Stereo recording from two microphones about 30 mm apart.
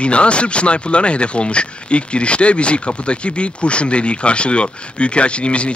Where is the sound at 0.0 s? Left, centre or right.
Left.